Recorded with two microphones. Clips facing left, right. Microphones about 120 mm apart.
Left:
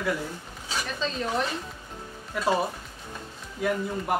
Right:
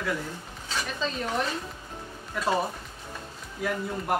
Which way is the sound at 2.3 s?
Centre (ahead or behind).